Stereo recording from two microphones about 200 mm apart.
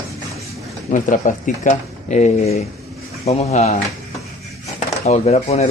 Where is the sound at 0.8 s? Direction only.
40° left (ahead or behind).